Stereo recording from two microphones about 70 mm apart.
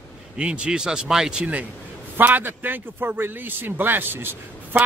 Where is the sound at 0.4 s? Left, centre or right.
Centre.